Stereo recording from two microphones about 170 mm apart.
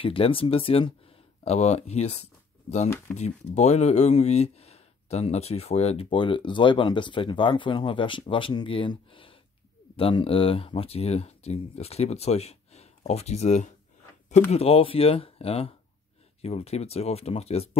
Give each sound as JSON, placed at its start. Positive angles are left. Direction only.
{"t": 0.0, "sound": "speech", "side_deg": 30}
{"t": 3.2, "sound": "speech", "side_deg": 40}